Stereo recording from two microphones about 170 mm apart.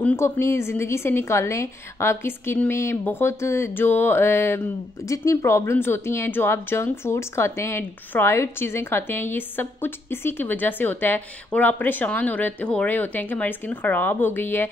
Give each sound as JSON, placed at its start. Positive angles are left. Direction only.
{"t": 0.0, "sound": "a woman's voice", "side_deg": 15}